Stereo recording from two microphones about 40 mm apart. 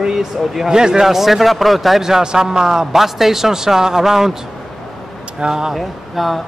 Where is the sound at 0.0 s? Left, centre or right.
Centre.